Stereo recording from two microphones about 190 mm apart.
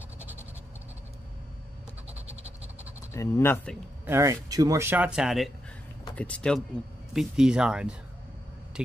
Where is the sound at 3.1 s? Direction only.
15° left (ahead or behind).